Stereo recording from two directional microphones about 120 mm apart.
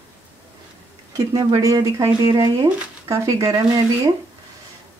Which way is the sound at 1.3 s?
30° right (ahead or behind).